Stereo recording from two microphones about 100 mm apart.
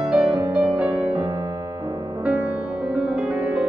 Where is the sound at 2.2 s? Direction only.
15° right (ahead or behind).